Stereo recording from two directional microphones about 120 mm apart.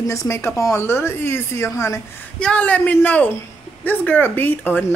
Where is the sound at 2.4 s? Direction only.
10° left (ahead or behind).